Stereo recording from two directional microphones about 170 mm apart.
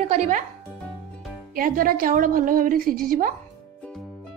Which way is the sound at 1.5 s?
55° right (ahead or behind).